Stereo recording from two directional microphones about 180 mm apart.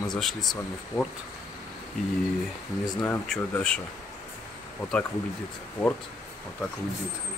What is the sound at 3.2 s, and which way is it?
Speech, 5° left (ahead or behind).